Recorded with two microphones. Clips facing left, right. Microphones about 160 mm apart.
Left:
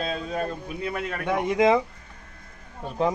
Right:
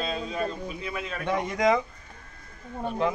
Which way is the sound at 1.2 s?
15° left (ahead or behind).